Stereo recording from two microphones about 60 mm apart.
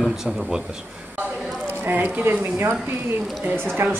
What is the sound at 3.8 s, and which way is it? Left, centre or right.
Speech, right.